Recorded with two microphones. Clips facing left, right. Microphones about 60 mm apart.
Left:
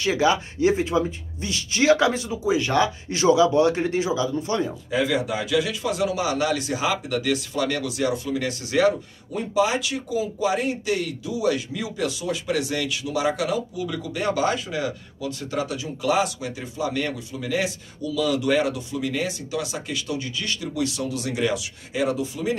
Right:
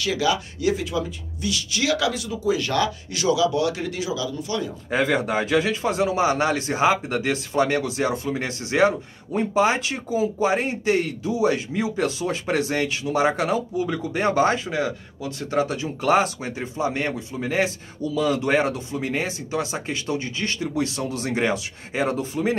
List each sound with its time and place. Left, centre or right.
0.0 s speech: left
4.9 s a man's voice: right